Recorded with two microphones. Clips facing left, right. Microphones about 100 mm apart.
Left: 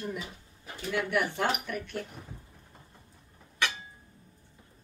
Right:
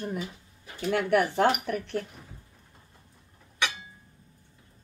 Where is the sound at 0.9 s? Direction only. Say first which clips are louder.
Right 5 dB; 50° right (ahead or behind).